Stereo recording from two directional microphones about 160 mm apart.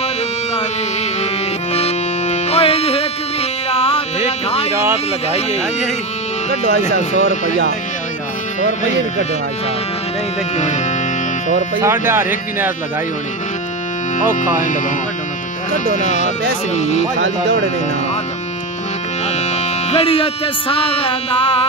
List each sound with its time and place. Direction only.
1.7 s music: 40° left (ahead or behind)
4.9 s speech: 40° left (ahead or behind)
8.5 s speech: 50° left (ahead or behind)
12.1 s speech: 10° right (ahead or behind)
14.3 s speech: 55° left (ahead or behind)
19.5 s speech: 40° left (ahead or behind)